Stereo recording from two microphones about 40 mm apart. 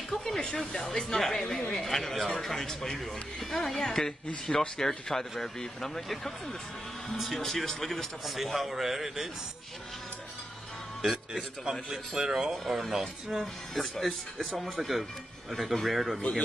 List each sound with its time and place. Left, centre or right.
0.1 s a sound: centre
0.8 s speech: centre
7.3 s speech: centre
8.4 s speech: centre
11.0 s a man's voice: centre
12.3 s speech: centre
13.7 s speech: centre
16.2 s speech: left